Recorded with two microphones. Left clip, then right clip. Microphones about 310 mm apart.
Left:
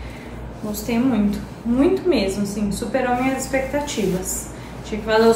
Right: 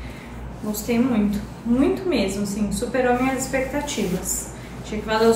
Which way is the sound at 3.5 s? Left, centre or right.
Centre.